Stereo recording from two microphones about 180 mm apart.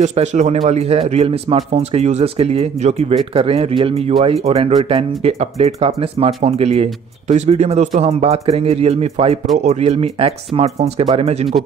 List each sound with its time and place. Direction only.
0.0 s speech: 40° right (ahead or behind)